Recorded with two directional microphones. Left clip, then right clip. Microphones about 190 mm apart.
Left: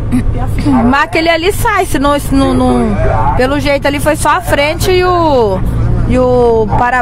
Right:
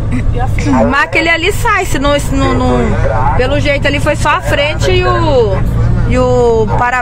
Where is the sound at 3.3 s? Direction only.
40° left (ahead or behind).